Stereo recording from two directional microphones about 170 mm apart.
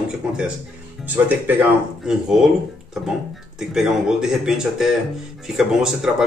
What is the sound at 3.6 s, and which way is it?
Speech, 5° right (ahead or behind).